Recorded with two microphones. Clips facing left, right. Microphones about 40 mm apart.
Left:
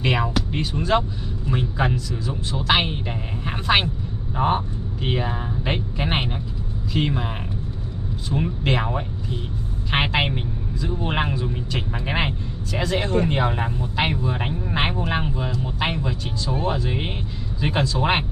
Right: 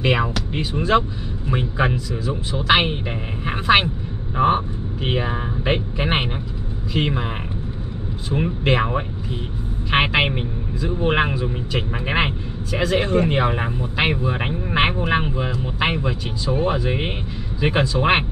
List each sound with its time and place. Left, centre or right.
0.0 s speech: centre
8.3 s speech: centre